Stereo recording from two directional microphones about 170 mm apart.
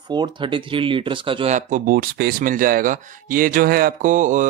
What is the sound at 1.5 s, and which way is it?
Speech, 55° right (ahead or behind).